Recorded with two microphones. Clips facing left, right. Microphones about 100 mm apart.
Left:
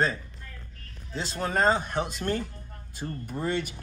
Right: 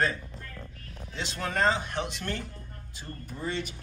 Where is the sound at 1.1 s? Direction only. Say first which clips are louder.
Left 3 dB; 35° left (ahead or behind).